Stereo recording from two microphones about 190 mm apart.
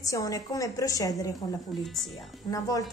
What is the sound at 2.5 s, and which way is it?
Speech, 20° left (ahead or behind).